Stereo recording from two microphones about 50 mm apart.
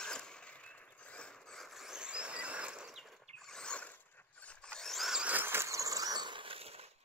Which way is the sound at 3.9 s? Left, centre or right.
Left.